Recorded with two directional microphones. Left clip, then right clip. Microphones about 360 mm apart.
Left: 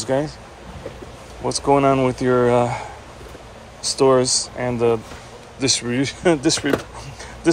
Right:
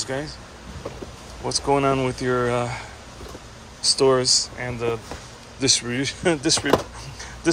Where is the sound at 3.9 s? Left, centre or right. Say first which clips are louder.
Left 4 dB; centre.